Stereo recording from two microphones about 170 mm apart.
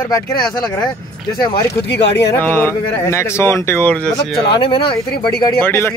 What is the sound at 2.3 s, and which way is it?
Speech, 15° left (ahead or behind).